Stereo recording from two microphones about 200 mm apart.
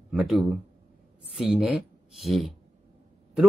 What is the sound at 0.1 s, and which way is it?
Speech, centre (ahead or behind).